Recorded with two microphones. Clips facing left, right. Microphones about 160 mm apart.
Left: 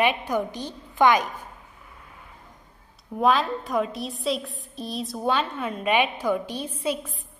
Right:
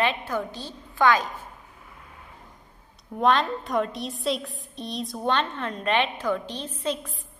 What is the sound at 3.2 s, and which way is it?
A woman's voice, 5° left (ahead or behind).